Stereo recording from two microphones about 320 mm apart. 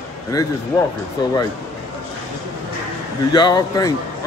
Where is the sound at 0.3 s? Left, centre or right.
Centre.